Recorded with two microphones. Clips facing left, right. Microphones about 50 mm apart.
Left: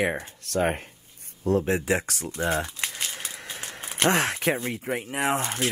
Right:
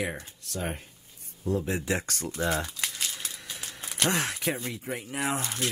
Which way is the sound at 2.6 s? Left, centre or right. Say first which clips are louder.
Left 2 dB; left.